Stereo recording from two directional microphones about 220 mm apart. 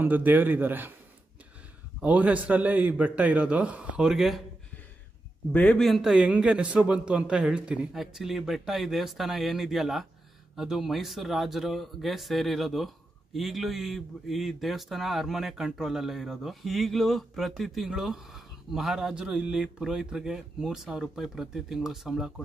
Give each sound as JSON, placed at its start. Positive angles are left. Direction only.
{"t": 0.0, "sound": "a man's voice", "side_deg": -10}
{"t": 2.0, "sound": "a man's voice", "side_deg": -5}
{"t": 5.5, "sound": "speech", "side_deg": 5}